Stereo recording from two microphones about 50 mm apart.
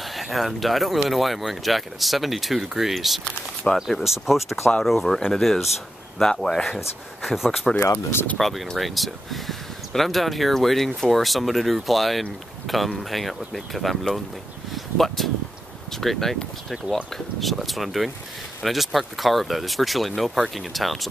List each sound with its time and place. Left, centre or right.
0.1 s speech: centre
3.7 s speech: centre
4.0 s speech: centre
7.2 s speech: centre
7.8 s speech: left
8.4 s speech: centre